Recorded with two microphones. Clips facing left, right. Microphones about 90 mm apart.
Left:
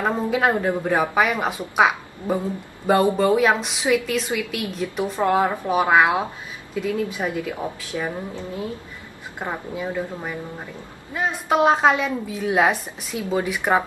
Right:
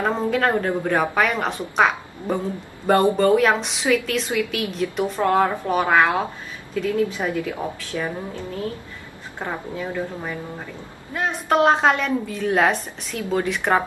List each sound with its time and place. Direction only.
0.0 s a woman's voice: 10° left (ahead or behind)
5.2 s a woman's voice: 15° left (ahead or behind)